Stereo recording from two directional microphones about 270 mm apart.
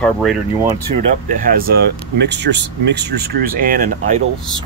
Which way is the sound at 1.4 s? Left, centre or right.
Right.